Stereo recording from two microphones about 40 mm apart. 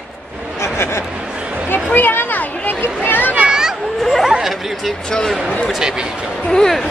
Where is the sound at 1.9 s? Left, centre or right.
Left.